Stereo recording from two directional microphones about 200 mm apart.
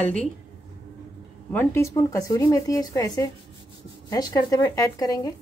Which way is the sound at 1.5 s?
10° left (ahead or behind).